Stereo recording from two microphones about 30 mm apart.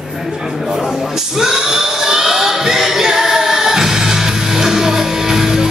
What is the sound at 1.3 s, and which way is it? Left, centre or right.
Crowd, centre.